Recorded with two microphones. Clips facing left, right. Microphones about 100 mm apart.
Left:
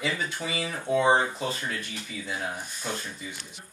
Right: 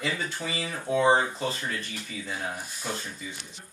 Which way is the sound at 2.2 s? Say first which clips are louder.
Left 1 dB; centre (ahead or behind).